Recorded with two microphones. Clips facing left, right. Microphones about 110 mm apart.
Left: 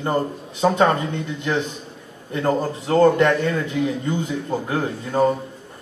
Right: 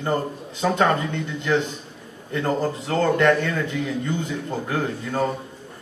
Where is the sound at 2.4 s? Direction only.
20° left (ahead or behind).